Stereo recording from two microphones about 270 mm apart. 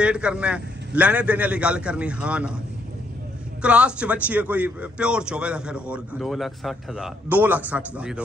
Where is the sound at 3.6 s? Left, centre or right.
Centre.